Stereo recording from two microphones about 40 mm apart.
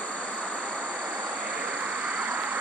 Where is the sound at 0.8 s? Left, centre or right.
Right.